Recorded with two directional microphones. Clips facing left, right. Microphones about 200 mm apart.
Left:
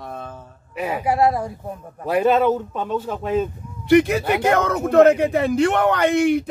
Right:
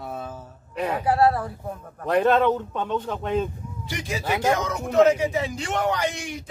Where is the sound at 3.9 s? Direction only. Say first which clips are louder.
Left 13 dB; 60° left (ahead or behind).